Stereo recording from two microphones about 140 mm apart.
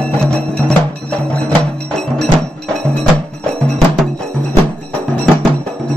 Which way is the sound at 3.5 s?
5° left (ahead or behind).